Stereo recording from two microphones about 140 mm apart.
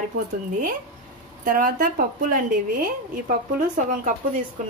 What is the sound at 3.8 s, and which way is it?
Speech, 70° right (ahead or behind).